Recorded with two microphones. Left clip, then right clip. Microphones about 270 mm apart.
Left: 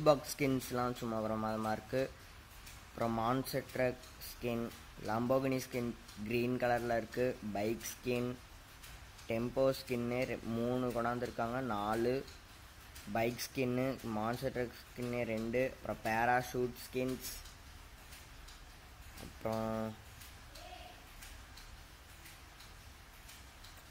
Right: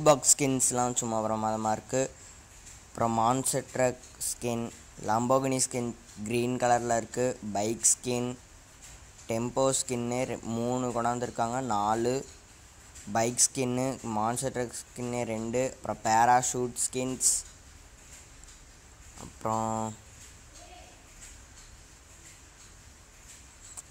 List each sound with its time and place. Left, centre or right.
0.0 s speech: centre
9.3 s speech: centre
19.4 s speech: centre